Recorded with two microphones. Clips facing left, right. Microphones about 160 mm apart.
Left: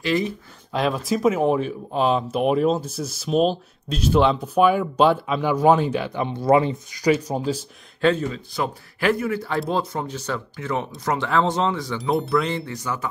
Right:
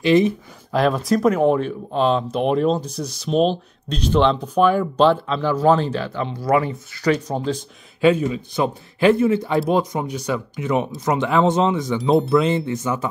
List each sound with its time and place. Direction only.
0.0 s speech: 20° right (ahead or behind)
0.7 s speech: centre (ahead or behind); by 7.1 s 20° left (ahead or behind)
7.1 s speech: 10° left (ahead or behind)
8.0 s a man's voice: 10° right (ahead or behind)